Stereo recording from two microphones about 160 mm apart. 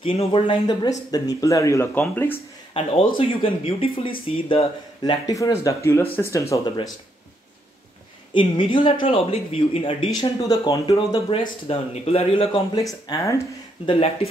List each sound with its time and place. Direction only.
0.0 s speech: 35° left (ahead or behind)
1.1 s speech: 20° left (ahead or behind)
2.3 s speech: 35° left (ahead or behind)
8.3 s speech: 30° left (ahead or behind)
10.4 s speech: 20° left (ahead or behind)
11.6 s speech: 35° left (ahead or behind)
12.7 s speech: 20° left (ahead or behind)
13.8 s speech: 35° left (ahead or behind)